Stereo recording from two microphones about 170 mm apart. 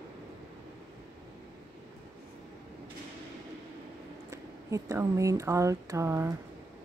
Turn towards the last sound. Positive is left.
turn(degrees=-15)  # may be behind; listen again after turning